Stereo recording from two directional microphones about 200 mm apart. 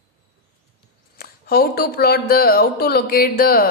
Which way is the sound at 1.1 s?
50° left (ahead or behind).